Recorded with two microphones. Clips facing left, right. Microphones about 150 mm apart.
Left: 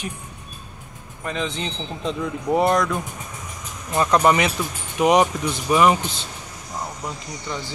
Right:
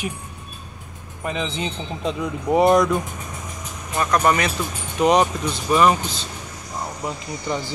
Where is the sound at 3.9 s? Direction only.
20° left (ahead or behind).